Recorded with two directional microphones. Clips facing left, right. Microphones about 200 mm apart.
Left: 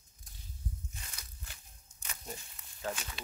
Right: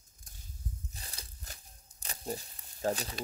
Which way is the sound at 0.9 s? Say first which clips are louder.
Right 2 dB; 35° right (ahead or behind).